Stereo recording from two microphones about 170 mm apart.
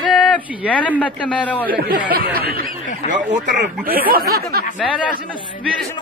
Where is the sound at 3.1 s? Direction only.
45° right (ahead or behind).